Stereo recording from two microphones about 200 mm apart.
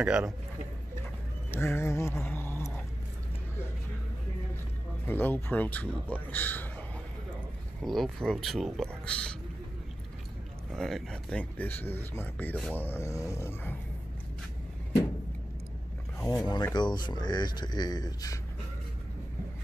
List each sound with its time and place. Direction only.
0.0 s speech: 5° right (ahead or behind)
1.5 s a sound: 10° left (ahead or behind)
5.0 s speech: 10° left (ahead or behind)
7.8 s speech: centre (ahead or behind)
10.7 s speech: centre (ahead or behind)
16.3 s speech: 20° left (ahead or behind)